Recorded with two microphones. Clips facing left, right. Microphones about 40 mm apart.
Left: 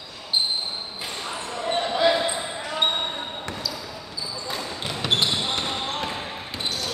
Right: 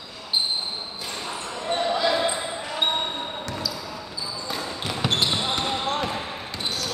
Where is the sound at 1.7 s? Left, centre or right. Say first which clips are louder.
Left 2 dB; left.